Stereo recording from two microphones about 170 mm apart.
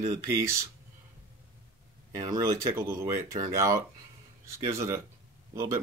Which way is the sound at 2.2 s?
15° right (ahead or behind).